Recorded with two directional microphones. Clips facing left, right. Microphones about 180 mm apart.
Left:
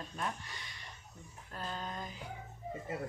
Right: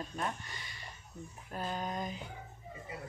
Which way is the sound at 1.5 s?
15° right (ahead or behind).